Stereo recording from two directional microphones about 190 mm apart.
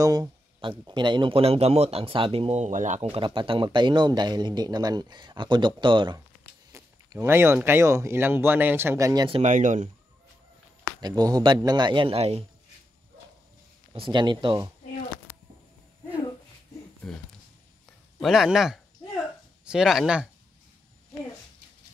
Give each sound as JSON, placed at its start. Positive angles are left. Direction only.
{"t": 0.0, "sound": "speech", "side_deg": -20}
{"t": 9.4, "sound": "speech", "side_deg": -40}
{"t": 11.0, "sound": "speech", "side_deg": -20}
{"t": 13.9, "sound": "speech", "side_deg": -25}
{"t": 18.2, "sound": "speech", "side_deg": 0}